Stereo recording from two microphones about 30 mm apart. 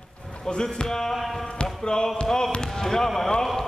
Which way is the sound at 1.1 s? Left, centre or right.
Centre.